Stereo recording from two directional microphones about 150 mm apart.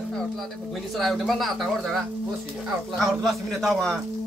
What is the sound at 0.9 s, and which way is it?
A man's voice, centre (ahead or behind).